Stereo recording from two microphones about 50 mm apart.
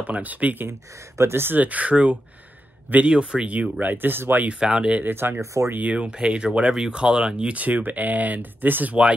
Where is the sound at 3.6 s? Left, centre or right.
Right.